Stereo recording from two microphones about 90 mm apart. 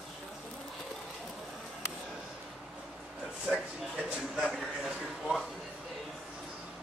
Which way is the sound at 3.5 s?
Centre (ahead or behind).